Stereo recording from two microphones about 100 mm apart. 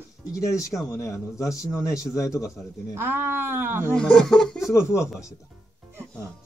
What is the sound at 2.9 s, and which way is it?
Speech, 20° right (ahead or behind).